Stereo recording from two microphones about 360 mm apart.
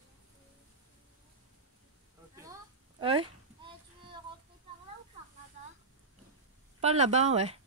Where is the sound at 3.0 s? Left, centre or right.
Centre.